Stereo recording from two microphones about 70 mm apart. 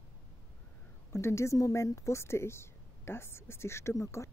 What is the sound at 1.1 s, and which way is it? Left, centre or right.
A woman's voice, left.